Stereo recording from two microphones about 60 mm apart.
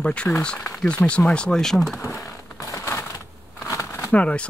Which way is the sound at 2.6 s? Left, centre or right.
Left.